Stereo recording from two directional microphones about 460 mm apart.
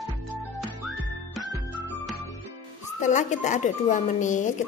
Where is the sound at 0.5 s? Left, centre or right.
Centre.